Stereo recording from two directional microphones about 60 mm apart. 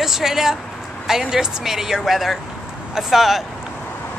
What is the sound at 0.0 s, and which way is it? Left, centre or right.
Speech, centre.